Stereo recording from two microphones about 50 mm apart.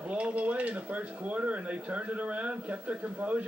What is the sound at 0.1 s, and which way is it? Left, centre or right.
Speech, right.